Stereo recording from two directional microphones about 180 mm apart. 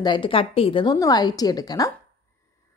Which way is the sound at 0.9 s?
20° left (ahead or behind).